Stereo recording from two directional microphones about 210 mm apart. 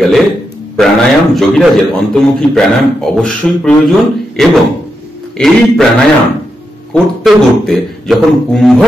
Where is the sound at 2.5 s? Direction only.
Centre (ahead or behind).